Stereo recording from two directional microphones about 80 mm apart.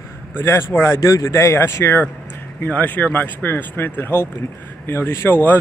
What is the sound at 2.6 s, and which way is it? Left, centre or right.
Speech, left.